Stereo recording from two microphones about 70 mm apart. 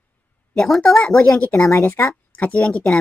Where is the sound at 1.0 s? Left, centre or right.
Centre.